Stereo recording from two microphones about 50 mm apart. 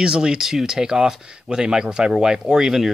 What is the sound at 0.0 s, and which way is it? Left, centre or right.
Speech, centre.